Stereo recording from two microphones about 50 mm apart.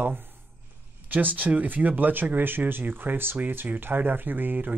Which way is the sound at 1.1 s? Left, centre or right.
Right.